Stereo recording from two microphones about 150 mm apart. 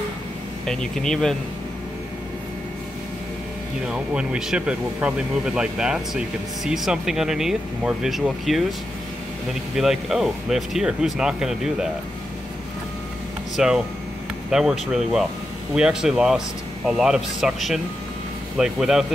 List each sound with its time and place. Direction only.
0.7 s speech: 5° left (ahead or behind)
3.9 s speech: 5° right (ahead or behind)
13.6 s speech: 5° right (ahead or behind)